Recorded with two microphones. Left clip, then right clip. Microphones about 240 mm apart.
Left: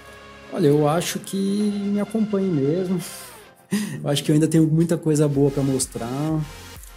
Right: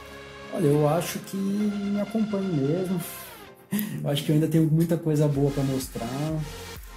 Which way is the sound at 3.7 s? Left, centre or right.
Left.